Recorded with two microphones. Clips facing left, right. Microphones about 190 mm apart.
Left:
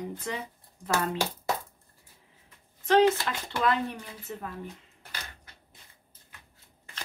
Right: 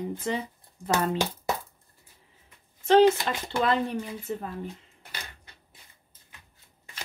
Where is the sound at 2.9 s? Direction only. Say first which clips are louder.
Right 3 dB; 25° right (ahead or behind).